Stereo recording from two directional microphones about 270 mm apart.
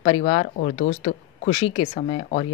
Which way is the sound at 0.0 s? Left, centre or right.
Left.